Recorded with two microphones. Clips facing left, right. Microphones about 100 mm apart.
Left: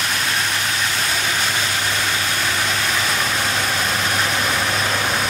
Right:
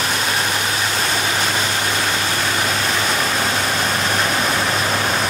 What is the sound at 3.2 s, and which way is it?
Vehicle, 5° right (ahead or behind).